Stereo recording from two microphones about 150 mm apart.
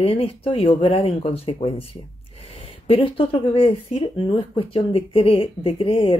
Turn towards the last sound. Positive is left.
turn(degrees=40)  # may be behind; listen again after turning